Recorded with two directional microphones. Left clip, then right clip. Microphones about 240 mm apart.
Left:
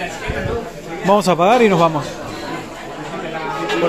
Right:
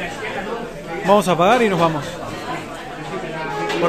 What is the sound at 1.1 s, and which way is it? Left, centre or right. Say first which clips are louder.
Speech: left 1 dB; centre.